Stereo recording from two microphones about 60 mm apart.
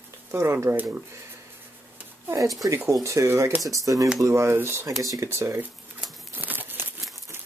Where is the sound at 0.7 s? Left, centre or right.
Right.